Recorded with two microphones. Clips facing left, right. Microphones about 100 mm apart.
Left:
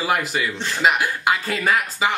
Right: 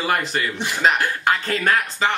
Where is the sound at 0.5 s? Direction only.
15° right (ahead or behind).